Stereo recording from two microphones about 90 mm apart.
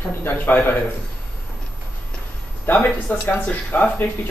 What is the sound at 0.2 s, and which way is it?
Speech, 20° left (ahead or behind).